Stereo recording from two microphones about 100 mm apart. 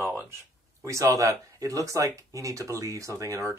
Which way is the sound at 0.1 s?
25° right (ahead or behind).